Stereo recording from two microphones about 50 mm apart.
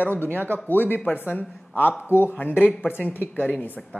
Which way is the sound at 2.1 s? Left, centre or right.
Left.